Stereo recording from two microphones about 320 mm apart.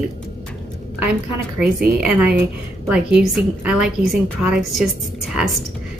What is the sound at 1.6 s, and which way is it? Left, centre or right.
A woman's voice, centre.